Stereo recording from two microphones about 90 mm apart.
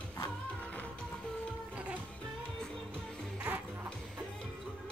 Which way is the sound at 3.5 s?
15° right (ahead or behind).